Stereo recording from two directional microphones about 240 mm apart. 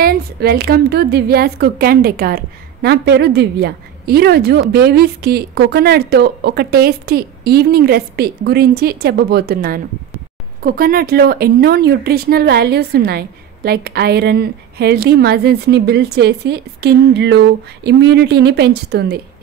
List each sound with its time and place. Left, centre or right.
0.0 s a woman's voice: right